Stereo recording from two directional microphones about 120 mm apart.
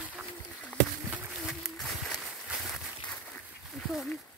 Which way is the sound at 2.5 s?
Centre (ahead or behind).